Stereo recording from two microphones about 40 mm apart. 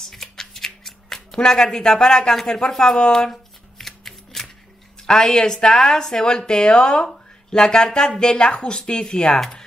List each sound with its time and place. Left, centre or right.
0.1 s scissors: centre
3.3 s shuffling cards: centre
5.0 s speech: centre